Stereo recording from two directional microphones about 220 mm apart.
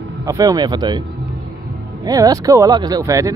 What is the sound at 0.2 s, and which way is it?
Speech, 15° right (ahead or behind).